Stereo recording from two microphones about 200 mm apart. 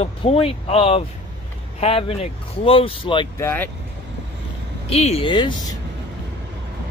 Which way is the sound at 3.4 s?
10° left (ahead or behind).